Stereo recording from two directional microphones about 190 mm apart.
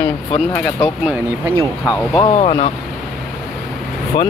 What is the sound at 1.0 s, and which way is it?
Speech, 10° right (ahead or behind).